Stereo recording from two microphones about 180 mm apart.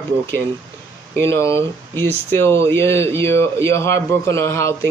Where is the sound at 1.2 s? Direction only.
15° left (ahead or behind).